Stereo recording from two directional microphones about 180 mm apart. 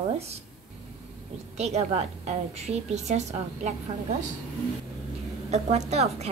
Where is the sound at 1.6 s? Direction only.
35° right (ahead or behind).